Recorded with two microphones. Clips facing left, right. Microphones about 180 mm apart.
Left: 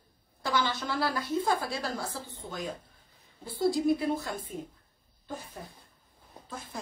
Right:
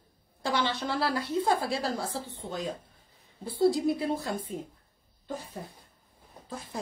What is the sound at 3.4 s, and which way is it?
Speech, 35° right (ahead or behind).